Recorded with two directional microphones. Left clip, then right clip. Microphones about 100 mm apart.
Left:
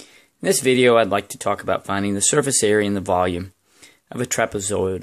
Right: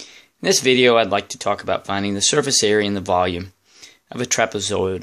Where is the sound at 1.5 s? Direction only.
25° left (ahead or behind).